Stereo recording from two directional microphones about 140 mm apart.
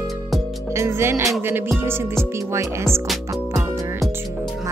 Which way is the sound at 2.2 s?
20° right (ahead or behind).